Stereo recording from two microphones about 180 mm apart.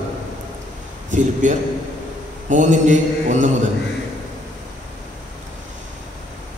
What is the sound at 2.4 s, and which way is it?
A man's voice, 45° right (ahead or behind).